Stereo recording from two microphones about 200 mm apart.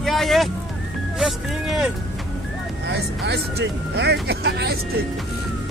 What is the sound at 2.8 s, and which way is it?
Speech, 55° right (ahead or behind).